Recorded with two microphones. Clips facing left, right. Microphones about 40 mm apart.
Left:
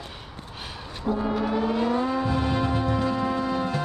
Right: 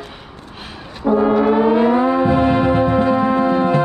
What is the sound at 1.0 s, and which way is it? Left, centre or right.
Foghorn, right.